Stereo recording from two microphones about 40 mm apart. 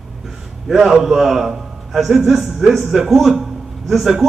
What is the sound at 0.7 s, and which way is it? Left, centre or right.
A man's voice, centre.